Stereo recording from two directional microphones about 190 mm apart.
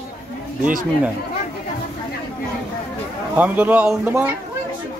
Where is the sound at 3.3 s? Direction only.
10° right (ahead or behind).